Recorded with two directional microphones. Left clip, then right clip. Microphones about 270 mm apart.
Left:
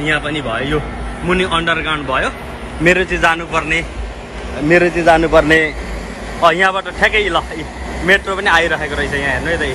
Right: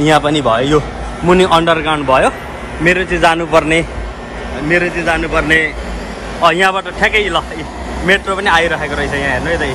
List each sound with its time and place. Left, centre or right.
0.2 s a man's voice: centre
2.8 s speech: centre
4.6 s a man's voice: centre